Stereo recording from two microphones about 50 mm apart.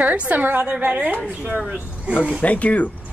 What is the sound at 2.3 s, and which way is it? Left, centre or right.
Speech, left.